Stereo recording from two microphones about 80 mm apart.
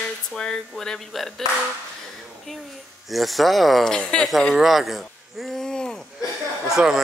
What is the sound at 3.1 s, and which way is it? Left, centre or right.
A man's voice, centre.